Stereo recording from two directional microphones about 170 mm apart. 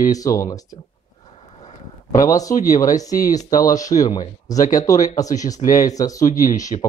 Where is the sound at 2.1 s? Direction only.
20° left (ahead or behind).